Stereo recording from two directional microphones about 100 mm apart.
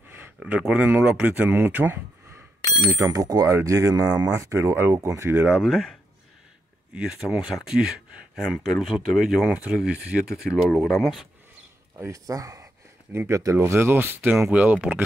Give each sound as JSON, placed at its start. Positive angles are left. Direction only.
{"t": 0.4, "sound": "speech", "side_deg": -10}
{"t": 2.6, "sound": "bicycle bell", "side_deg": 35}
{"t": 3.0, "sound": "speech", "side_deg": -35}
{"t": 5.6, "sound": "speech", "side_deg": 5}
{"t": 12.0, "sound": "speech", "side_deg": -35}
{"t": 14.5, "sound": "speech", "side_deg": -15}